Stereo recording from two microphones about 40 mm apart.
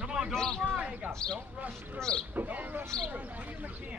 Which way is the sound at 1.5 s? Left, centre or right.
Right.